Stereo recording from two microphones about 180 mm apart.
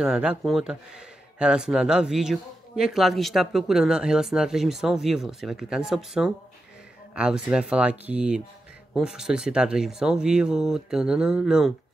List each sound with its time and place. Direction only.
0.0 s speech: 5° right (ahead or behind)